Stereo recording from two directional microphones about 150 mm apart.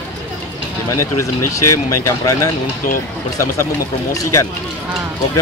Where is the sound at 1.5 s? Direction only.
20° left (ahead or behind).